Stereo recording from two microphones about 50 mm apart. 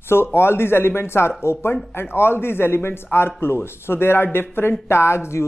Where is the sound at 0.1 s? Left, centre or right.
Left.